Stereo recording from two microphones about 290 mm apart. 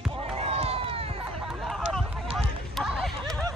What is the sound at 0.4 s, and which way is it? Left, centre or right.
Run, right.